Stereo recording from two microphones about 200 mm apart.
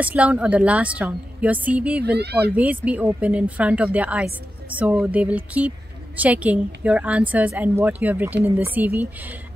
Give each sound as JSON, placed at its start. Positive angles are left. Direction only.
{"t": 0.0, "sound": "a woman's voice", "side_deg": -5}
{"t": 2.0, "sound": "speech", "side_deg": -55}
{"t": 2.5, "sound": "a woman's voice", "side_deg": -5}